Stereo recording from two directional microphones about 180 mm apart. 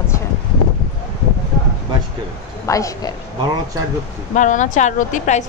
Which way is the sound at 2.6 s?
20° left (ahead or behind).